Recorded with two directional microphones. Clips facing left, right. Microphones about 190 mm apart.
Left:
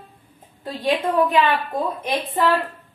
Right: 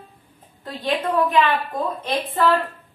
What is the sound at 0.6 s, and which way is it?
Speech, 10° left (ahead or behind).